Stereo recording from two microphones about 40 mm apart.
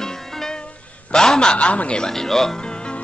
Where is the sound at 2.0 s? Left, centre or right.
Centre.